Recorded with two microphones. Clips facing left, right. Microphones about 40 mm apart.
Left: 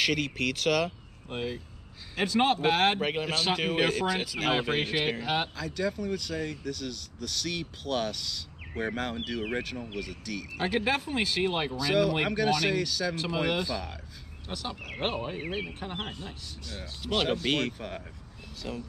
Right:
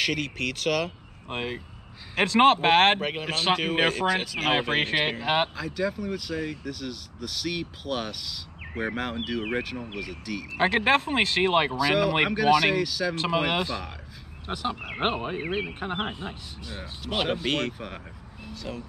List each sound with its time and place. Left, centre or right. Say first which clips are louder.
0.0 s speech: even; centre
1.3 s speech: right 2 dB; right
3.0 s speech: even; centre
5.2 s speech: right 5 dB; right
5.6 s speech: right 2 dB; centre
10.6 s speech: right 6 dB; right
11.7 s speech: right 3 dB; centre
13.1 s speech: right 4 dB; right
14.5 s speech: right 6 dB; right; by 18.9 s centre